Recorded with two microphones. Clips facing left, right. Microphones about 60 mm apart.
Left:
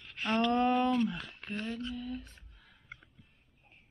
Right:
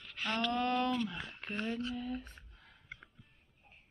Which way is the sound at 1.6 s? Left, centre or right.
Centre.